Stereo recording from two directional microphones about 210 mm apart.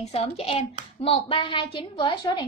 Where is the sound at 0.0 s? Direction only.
30° left (ahead or behind).